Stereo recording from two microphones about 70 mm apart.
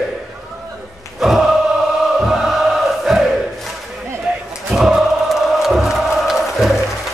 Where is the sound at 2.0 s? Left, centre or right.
Centre.